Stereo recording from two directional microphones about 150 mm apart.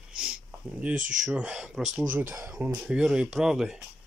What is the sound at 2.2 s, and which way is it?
Speech, 15° right (ahead or behind).